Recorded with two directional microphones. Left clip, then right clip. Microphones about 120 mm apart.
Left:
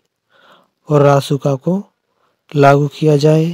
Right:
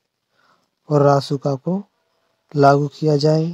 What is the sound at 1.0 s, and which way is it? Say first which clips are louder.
Speech: left 4 dB; 45° left (ahead or behind).